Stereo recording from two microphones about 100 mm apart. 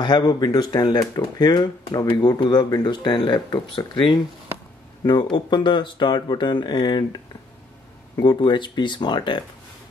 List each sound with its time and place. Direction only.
0.0 s speech: 45° left (ahead or behind)
8.2 s speech: 50° left (ahead or behind)